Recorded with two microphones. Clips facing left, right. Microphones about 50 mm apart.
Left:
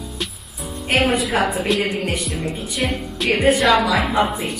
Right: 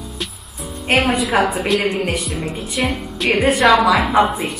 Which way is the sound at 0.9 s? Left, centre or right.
Centre.